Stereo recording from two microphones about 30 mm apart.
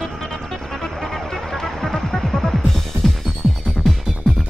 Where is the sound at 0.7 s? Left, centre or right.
Centre.